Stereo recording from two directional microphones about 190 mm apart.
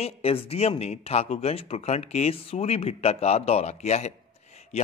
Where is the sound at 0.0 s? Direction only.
30° left (ahead or behind).